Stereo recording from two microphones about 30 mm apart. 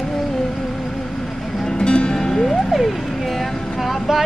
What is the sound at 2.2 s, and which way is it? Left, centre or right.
Music, centre.